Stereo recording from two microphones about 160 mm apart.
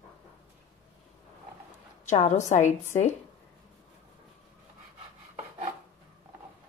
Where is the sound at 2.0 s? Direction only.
45° left (ahead or behind).